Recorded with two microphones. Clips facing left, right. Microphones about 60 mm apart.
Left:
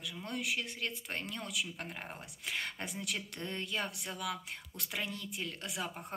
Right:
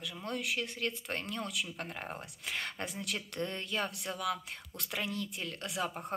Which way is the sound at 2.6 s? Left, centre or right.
Centre.